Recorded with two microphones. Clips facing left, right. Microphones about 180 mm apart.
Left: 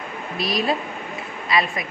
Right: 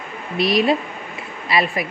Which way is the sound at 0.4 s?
Centre (ahead or behind).